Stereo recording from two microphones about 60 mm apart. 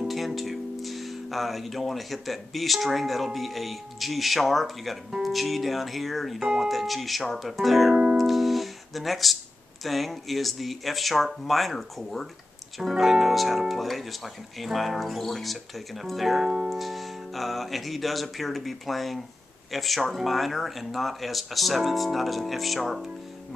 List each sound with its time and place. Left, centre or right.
0.1 s speech: centre
7.9 s music: centre
8.2 s music: centre
9.8 s speech: centre